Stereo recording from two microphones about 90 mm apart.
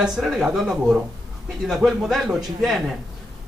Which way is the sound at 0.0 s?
5° right (ahead or behind).